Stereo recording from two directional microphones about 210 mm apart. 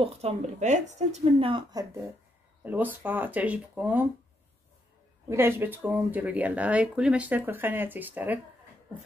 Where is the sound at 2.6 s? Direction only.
10° right (ahead or behind).